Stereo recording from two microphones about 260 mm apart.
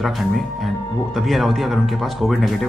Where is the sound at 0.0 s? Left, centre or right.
Centre.